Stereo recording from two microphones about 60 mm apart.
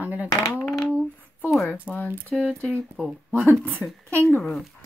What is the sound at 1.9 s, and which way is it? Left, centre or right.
Speech, centre.